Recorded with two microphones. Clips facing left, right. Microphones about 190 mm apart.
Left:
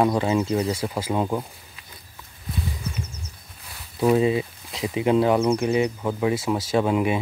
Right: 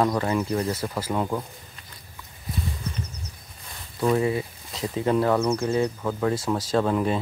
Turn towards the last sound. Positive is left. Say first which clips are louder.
# left 1 dB
turn(degrees=15)  # may be behind; listen again after turning